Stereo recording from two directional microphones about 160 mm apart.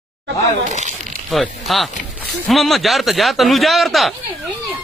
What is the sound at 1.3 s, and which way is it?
A man's voice, centre (ahead or behind).